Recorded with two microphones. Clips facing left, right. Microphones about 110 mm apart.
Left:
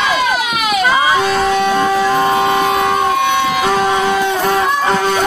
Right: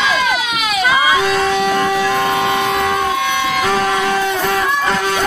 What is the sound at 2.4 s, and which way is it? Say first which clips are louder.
Train: left 3 dB; centre (ahead or behind).